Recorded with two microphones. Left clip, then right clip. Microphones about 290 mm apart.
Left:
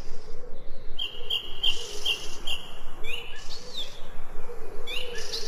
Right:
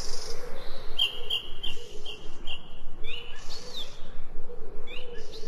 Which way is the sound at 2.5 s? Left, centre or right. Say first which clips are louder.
Left 6 dB; left.